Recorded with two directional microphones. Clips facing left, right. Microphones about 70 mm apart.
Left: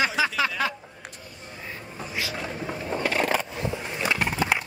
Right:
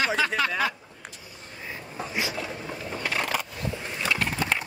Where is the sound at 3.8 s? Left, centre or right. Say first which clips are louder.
Even; centre.